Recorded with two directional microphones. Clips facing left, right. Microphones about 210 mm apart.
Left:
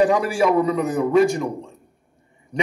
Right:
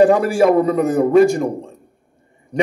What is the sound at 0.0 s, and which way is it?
A man's voice, 55° right (ahead or behind).